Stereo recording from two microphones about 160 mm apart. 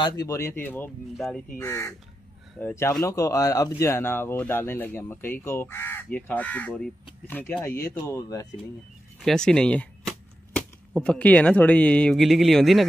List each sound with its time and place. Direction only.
0.0 s speech: 20° left (ahead or behind)
1.1 s speech: centre (ahead or behind)
1.6 s speech: 15° left (ahead or behind)
9.2 s speech: 5° left (ahead or behind)